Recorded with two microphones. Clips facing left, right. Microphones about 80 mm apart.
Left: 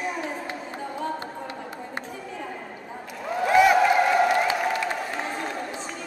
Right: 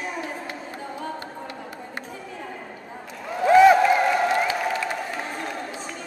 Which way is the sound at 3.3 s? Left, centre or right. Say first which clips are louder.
Right 4 dB; centre.